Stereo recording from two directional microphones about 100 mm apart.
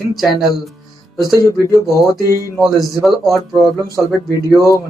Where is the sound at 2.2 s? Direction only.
35° right (ahead or behind).